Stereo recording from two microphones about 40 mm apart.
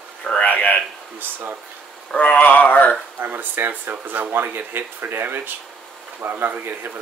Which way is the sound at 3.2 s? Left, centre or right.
Right.